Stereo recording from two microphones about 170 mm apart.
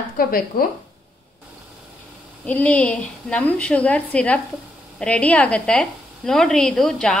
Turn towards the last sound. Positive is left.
turn(degrees=5)  # may be behind; listen again after turning